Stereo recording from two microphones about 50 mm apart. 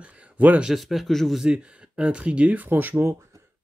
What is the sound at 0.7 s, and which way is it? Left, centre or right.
Speech, centre.